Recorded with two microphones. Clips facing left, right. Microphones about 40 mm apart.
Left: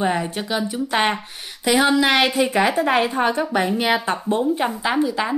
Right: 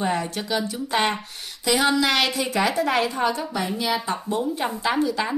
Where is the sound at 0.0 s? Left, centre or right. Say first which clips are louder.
Left 3 dB; left.